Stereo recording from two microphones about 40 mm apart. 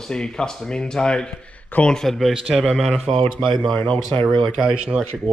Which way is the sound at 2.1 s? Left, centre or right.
Centre.